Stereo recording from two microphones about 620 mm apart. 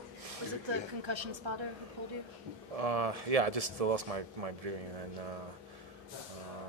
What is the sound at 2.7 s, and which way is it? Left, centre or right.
Speech, right.